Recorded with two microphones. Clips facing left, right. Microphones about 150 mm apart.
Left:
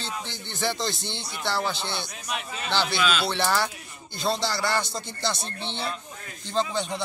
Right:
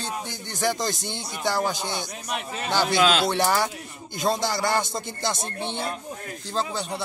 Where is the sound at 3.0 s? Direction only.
90° right.